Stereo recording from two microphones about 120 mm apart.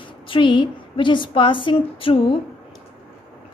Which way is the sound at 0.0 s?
45° left (ahead or behind).